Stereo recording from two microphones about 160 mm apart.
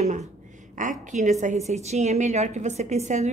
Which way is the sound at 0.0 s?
45° right (ahead or behind).